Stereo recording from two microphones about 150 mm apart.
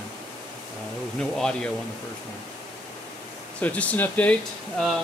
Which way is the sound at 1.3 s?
5° left (ahead or behind).